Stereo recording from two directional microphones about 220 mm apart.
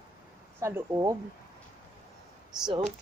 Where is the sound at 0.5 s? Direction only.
15° right (ahead or behind).